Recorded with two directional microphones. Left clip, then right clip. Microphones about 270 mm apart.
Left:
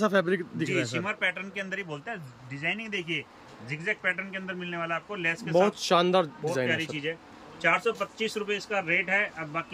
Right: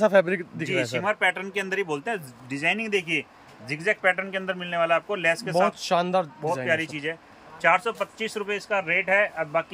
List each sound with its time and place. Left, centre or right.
0.0 s speech: centre
5.8 s a man's voice: centre
6.7 s speech: centre